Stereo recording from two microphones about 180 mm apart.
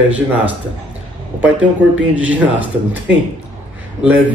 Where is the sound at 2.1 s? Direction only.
10° right (ahead or behind).